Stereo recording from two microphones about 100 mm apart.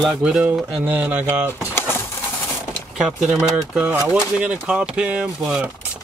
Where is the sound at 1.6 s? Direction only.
25° left (ahead or behind).